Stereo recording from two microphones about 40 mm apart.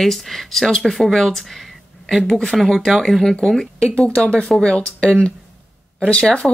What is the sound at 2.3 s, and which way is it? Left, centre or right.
Speech, centre.